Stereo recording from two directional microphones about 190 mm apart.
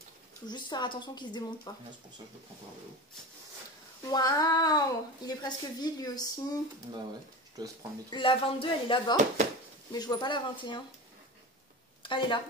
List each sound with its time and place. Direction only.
0.5 s a woman's voice: 25° left (ahead or behind)
4.1 s a woman's voice: 20° left (ahead or behind)
7.6 s speech: 20° right (ahead or behind)
8.1 s a woman's voice: 25° left (ahead or behind)
12.0 s a woman's voice: 25° left (ahead or behind)